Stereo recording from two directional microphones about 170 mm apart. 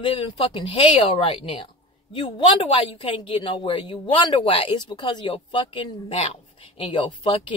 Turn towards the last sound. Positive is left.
turn(degrees=30)  # may be behind; listen again after turning